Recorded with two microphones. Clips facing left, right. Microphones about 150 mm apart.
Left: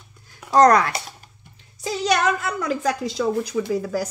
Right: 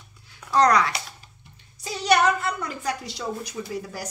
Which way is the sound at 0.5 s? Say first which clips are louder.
Left 5 dB; 45° left (ahead or behind).